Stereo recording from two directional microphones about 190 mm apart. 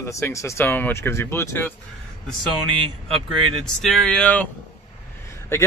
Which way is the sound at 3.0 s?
Centre (ahead or behind).